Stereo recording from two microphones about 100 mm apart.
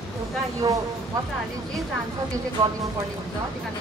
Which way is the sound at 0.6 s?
40° right (ahead or behind).